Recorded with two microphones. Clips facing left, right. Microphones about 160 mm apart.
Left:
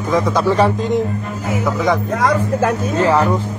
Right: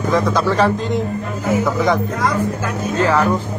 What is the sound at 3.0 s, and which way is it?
Speech, 25° left (ahead or behind).